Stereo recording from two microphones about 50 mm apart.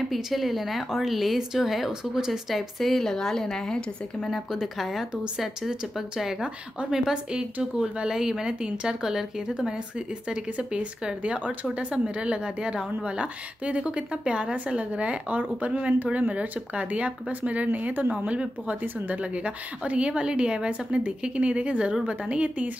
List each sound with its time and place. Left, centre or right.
0.1 s a woman's voice: centre
2.5 s a woman's voice: centre
4.3 s a woman's voice: centre; by 18.1 s right
18.1 s a woman's voice: right